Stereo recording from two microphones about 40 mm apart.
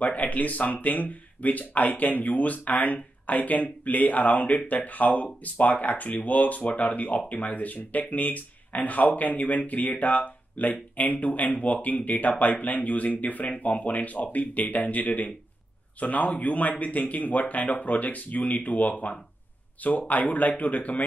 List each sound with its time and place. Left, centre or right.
0.0 s speech: left